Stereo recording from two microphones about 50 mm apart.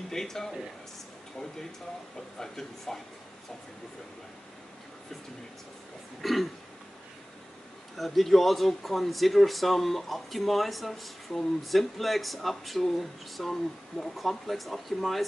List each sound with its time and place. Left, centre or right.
0.1 s speech: centre
2.3 s speech: centre
6.2 s speech: centre
7.9 s speech: centre